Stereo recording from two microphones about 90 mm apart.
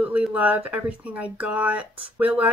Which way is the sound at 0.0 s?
15° right (ahead or behind).